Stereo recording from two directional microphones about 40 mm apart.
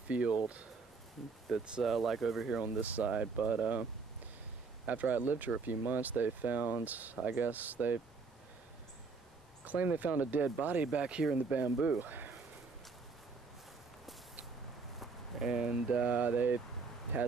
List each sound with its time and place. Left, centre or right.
0.1 s speech: right
1.5 s speech: centre
2.6 s speech: right
3.1 s speech: right
4.8 s speech: right
9.7 s speech: right
10.9 s speech: right
11.3 s speech: right
12.0 s speech: right
15.4 s speech: centre
16.2 s speech: right